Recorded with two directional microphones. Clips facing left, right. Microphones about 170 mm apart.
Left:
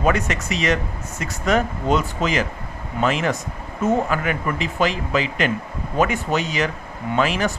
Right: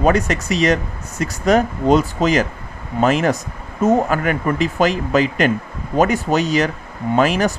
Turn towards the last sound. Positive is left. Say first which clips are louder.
# right 5 dB
turn(degrees=-40)  # may be behind; listen again after turning